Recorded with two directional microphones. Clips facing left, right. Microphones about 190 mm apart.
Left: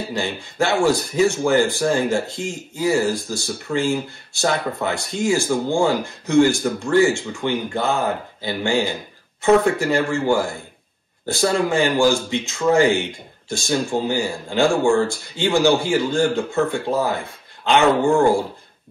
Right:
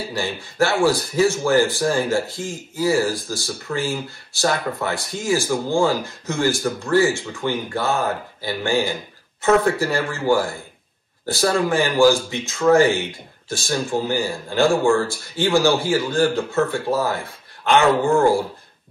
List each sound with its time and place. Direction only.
0.1 s speech: 15° left (ahead or behind)